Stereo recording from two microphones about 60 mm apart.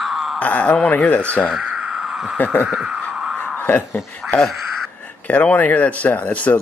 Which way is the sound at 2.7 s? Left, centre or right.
Centre.